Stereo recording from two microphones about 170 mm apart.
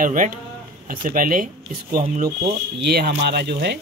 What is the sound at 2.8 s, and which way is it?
Speech, 70° right (ahead or behind).